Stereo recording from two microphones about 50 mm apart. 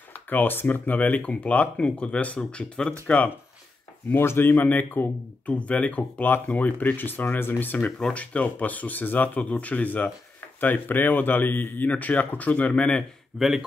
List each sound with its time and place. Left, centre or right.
0.3 s speech: left
4.1 s speech: left
5.5 s speech: left
8.1 s speech: left
13.3 s a man's voice: centre